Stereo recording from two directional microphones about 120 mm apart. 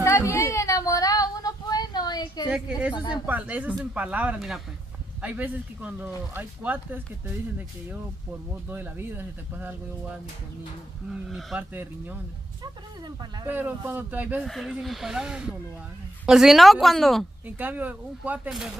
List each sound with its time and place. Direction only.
0.0 s child singing: 25° left (ahead or behind)
2.4 s a woman's voice: 10° right (ahead or behind)
2.9 s speech: 40° left (ahead or behind)
3.3 s speech: 15° right (ahead or behind)
8.6 s speech: 15° right (ahead or behind)
11.1 s speech: 5° right (ahead or behind)
11.7 s speech: 15° right (ahead or behind)
13.5 s speech: 15° right (ahead or behind)
14.4 s speech: centre (ahead or behind)
17.5 s speech: 15° right (ahead or behind)